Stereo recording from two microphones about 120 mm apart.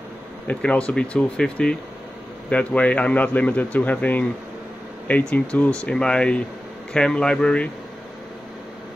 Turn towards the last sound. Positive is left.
turn(degrees=10)  # may be behind; listen again after turning